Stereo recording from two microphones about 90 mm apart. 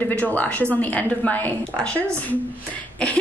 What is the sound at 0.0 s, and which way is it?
Speech, 20° left (ahead or behind).